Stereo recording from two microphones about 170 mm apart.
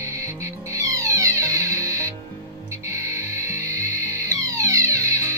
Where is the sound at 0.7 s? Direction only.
20° right (ahead or behind).